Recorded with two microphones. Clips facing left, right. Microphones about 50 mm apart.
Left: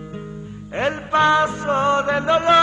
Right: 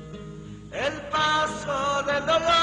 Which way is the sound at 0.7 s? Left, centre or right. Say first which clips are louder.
Left 7 dB; left.